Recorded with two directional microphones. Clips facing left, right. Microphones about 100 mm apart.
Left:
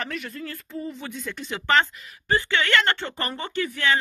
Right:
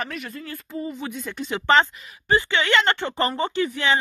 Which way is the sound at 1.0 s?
15° right (ahead or behind).